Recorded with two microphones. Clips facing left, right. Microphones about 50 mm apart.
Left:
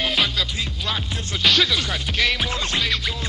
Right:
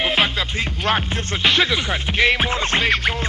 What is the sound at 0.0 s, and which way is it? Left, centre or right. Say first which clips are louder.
Music: right 3 dB; right.